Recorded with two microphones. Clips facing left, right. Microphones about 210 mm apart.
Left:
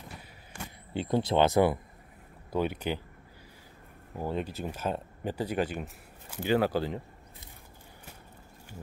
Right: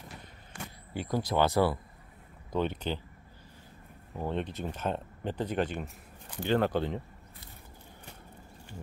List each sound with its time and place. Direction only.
0.9 s speech: 25° left (ahead or behind)
2.5 s speech: 10° left (ahead or behind)
4.1 s speech: 5° left (ahead or behind)